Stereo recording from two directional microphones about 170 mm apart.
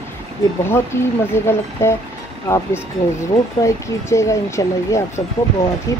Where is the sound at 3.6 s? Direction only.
15° left (ahead or behind).